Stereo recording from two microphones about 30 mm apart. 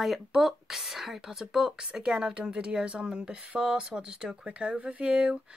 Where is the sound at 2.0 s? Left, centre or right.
Right.